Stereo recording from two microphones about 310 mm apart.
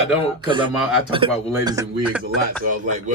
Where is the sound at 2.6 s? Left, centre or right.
Right.